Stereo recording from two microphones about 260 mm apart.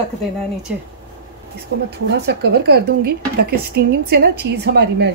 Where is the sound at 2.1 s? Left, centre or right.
Right.